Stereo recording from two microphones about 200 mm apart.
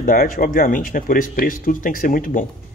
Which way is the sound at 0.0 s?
45° left (ahead or behind).